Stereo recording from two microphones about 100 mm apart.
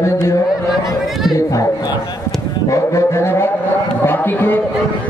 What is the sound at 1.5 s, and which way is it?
A man's voice, 35° left (ahead or behind).